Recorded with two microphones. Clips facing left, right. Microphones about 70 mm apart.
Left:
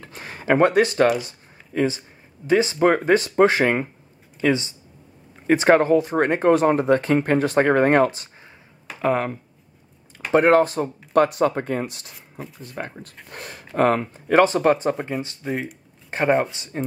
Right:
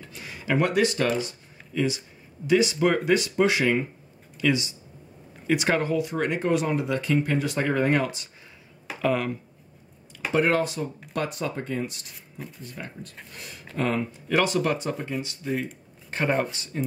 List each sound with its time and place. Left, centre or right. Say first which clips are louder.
0.0 s a sound: left 4 dB; left
2.4 s speech: left 4 dB; left
15.0 s speech: left 4 dB; left
16.1 s speech: left 5 dB; left